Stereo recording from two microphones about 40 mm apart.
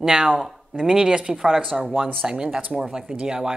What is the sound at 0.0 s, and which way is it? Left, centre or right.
Speech, centre.